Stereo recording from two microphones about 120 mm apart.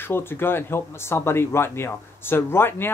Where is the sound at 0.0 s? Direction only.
20° left (ahead or behind).